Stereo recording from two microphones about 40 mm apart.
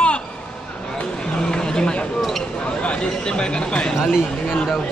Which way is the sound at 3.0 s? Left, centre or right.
Centre.